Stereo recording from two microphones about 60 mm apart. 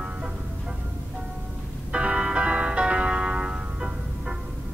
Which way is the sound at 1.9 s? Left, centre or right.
Centre.